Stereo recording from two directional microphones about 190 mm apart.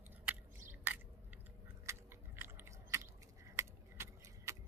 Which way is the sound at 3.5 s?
15° right (ahead or behind).